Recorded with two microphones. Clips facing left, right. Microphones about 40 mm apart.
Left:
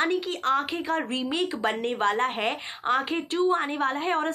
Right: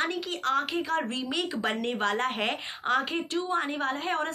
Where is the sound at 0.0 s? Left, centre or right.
Centre.